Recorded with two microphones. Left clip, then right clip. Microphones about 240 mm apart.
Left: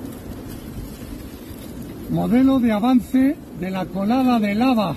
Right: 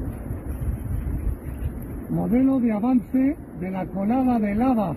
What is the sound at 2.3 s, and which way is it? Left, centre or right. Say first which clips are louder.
A man's voice: left 4 dB; left.